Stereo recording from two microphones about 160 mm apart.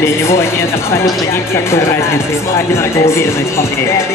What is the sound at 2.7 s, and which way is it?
Speech, 15° left (ahead or behind).